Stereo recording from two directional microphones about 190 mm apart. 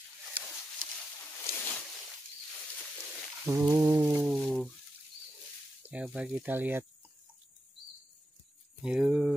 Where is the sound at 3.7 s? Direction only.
15° right (ahead or behind).